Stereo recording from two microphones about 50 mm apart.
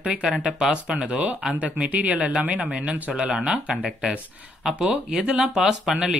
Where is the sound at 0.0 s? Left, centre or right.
Centre.